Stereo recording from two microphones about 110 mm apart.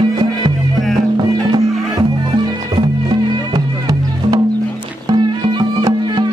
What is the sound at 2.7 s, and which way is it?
Music, 40° right (ahead or behind).